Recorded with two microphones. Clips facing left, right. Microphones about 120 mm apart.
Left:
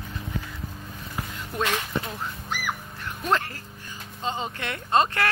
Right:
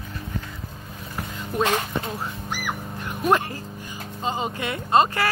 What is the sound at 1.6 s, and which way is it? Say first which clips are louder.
Speech: right 3 dB; 35° right (ahead or behind).